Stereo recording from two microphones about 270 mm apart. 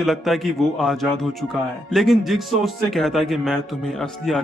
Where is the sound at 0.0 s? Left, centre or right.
Centre.